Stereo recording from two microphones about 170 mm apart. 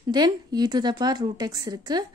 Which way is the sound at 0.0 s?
25° right (ahead or behind).